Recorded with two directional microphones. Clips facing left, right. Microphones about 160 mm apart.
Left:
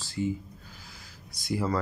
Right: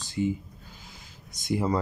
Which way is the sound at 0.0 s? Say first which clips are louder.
Right 3 dB; 20° right (ahead or behind).